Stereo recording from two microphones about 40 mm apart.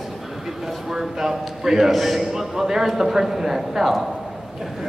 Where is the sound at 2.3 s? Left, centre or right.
Centre.